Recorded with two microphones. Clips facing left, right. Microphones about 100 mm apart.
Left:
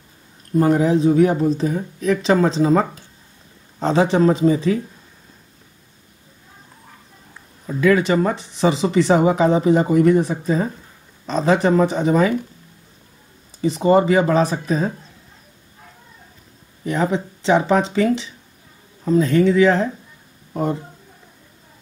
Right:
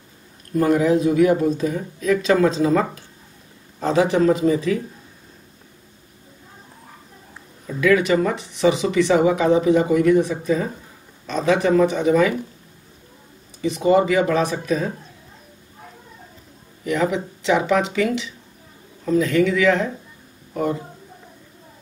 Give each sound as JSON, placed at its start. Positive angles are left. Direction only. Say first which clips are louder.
{"t": 0.6, "sound": "speech", "louder": "left 1 dB", "side_deg": 30}
{"t": 7.6, "sound": "speech", "louder": "left 1 dB", "side_deg": 30}
{"t": 13.6, "sound": "speech", "louder": "left 2 dB", "side_deg": 35}
{"t": 16.8, "sound": "speech", "louder": "left 1 dB", "side_deg": 35}